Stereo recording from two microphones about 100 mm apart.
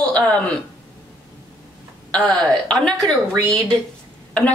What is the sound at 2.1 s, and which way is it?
A woman's voice, 10° left (ahead or behind).